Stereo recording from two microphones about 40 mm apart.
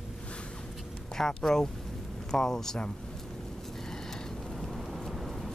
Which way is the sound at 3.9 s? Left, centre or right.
Centre.